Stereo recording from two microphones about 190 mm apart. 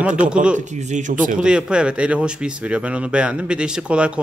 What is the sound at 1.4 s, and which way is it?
Speech, 5° right (ahead or behind).